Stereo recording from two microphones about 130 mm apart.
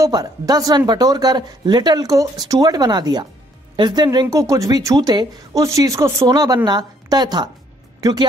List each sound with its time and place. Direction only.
0.0 s a woman's voice: 30° right (ahead or behind)